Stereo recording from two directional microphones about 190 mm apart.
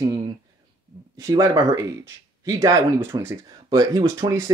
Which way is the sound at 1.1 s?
15° right (ahead or behind).